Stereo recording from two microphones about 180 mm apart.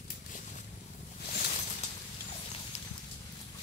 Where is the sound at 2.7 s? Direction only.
40° left (ahead or behind).